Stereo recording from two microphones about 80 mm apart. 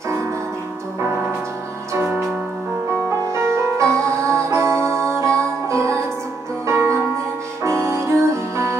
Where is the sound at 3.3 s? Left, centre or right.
Right.